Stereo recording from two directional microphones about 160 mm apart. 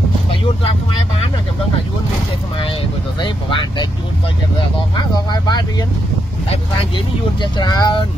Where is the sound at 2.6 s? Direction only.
35° left (ahead or behind).